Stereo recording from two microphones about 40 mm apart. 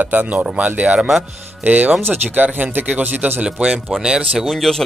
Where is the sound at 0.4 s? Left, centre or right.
Right.